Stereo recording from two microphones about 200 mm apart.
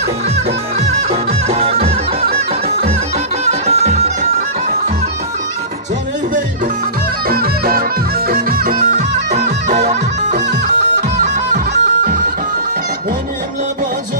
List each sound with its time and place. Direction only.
1.1 s music: 30° right (ahead or behind)
3.6 s music: 35° right (ahead or behind)
7.2 s music: 50° right (ahead or behind)